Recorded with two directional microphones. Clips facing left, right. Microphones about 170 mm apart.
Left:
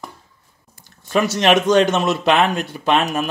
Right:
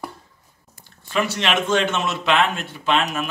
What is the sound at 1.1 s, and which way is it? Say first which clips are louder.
Speech: left 6 dB; 40° left (ahead or behind).